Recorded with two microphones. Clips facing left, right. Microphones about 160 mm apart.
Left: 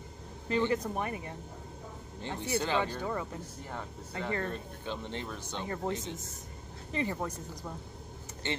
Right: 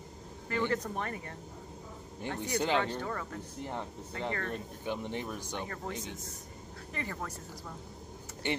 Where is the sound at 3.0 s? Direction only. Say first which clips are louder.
Left 3 dB; 15° left (ahead or behind).